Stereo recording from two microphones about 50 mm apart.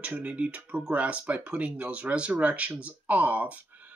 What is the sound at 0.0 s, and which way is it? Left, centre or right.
Speech, right.